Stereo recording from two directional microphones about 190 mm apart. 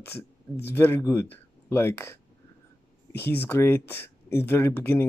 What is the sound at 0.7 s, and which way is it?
Speech, 10° left (ahead or behind).